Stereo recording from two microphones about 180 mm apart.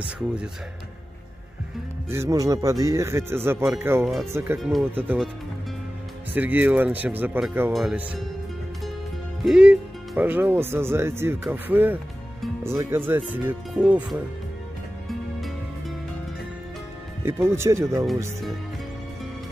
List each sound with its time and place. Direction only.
0.0 s speech: 5° right (ahead or behind)
2.0 s speech: 15° right (ahead or behind)
4.0 s speech: centre (ahead or behind)
4.3 s speech: 15° right (ahead or behind)
6.3 s speech: 10° right (ahead or behind)
9.4 s speech: 5° right (ahead or behind)
17.2 s speech: 15° right (ahead or behind)